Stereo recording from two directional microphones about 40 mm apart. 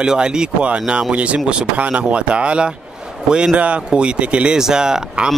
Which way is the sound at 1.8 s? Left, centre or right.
Right.